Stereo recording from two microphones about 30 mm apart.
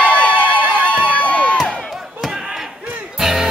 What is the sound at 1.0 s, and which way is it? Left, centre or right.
Crowd, left.